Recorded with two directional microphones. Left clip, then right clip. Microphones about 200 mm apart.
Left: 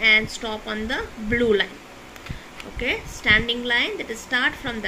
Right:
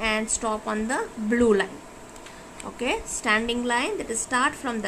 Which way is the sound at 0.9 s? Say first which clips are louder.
Left 2 dB; 45° right (ahead or behind).